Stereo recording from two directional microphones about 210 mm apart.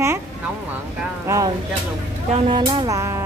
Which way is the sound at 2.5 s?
25° right (ahead or behind).